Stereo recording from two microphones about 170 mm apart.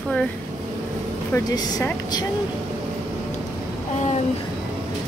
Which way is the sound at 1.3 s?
20° left (ahead or behind).